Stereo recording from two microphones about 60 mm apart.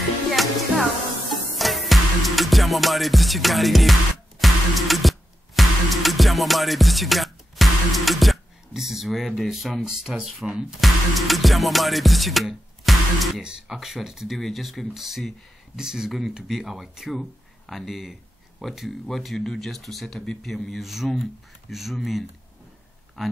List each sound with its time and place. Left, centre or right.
0.3 s music: centre
10.8 s speech: centre
13.4 s speech: centre